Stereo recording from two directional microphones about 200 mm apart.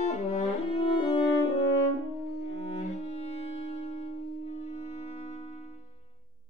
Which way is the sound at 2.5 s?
30° left (ahead or behind).